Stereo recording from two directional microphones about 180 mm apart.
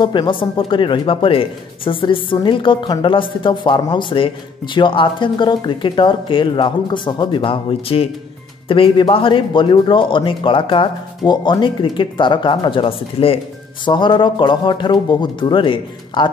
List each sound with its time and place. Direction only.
0.0 s speech: 25° left (ahead or behind)